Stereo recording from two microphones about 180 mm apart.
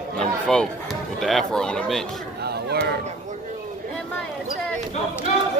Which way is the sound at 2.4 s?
65° right (ahead or behind).